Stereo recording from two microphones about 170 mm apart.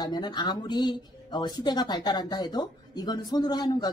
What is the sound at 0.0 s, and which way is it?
Speech, 25° left (ahead or behind).